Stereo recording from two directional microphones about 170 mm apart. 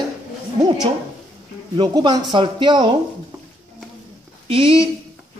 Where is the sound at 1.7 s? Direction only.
25° right (ahead or behind).